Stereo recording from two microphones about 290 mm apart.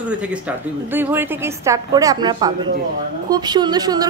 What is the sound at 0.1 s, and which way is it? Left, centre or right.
A woman's voice, centre.